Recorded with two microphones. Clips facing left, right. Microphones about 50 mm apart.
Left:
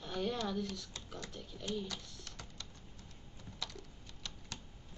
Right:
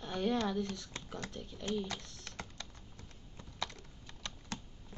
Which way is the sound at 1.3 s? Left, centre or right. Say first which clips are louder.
Right 2 dB; centre.